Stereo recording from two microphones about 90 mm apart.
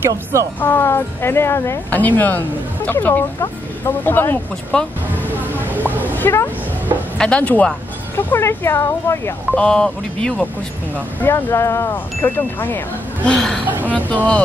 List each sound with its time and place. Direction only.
0.1 s speech: 35° right (ahead or behind)
0.6 s speech: 25° left (ahead or behind)
4.7 s speech: 10° left (ahead or behind)
5.1 s a sound: 20° right (ahead or behind)
6.1 s speech: 25° left (ahead or behind)
7.2 s speech: 10° left (ahead or behind); by 9.3 s 30° left (ahead or behind)
9.6 s speech: 5° left (ahead or behind)
11.1 s speech: 25° left (ahead or behind)
13.3 s a woman's voice: 5° left (ahead or behind)
13.8 s speech: 15° left (ahead or behind)